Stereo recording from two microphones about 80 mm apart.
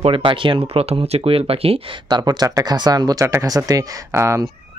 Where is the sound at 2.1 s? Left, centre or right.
Right.